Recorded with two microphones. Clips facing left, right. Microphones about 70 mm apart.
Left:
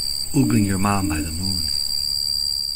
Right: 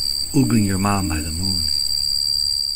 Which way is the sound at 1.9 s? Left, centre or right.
Right.